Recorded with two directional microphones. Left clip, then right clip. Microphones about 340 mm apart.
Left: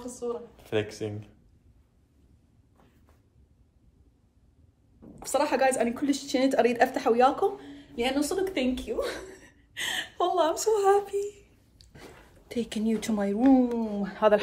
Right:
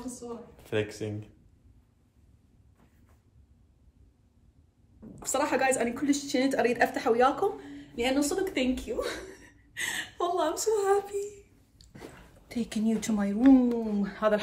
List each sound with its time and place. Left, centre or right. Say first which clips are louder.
0.7 s speech: left 1 dB; centre
5.2 s a woman's voice: left 2 dB; centre
11.8 s a sound: left 1 dB; centre
12.4 s a woman's voice: left 2 dB; centre